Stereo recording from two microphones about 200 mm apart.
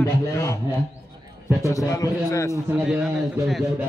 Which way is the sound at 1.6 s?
15° left (ahead or behind).